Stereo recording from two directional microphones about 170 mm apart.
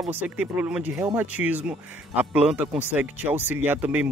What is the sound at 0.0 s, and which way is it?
Speech, 10° right (ahead or behind).